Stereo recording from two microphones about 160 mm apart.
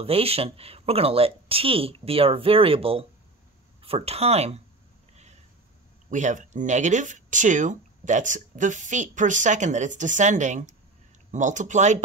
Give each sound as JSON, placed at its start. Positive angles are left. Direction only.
{"t": 0.0, "sound": "speech", "side_deg": -40}
{"t": 5.1, "sound": "a sound", "side_deg": -45}
{"t": 6.0, "sound": "speech", "side_deg": -50}